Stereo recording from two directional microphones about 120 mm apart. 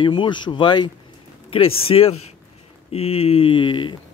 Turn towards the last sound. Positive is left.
turn(degrees=45)  # may be behind; listen again after turning